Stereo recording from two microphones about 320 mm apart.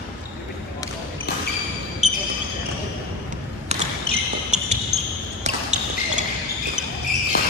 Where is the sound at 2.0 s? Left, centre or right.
Centre.